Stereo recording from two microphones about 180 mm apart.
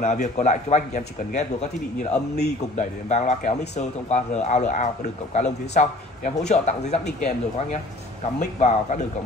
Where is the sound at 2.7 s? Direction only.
40° left (ahead or behind).